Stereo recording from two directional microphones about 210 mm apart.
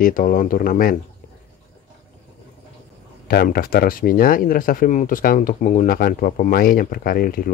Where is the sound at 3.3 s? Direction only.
45° left (ahead or behind).